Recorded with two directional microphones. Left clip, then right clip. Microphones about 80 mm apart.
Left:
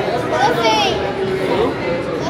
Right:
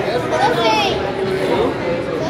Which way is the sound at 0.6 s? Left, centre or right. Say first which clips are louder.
Left 1 dB; left.